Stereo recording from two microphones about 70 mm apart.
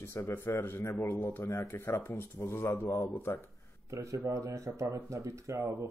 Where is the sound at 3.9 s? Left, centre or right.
Right.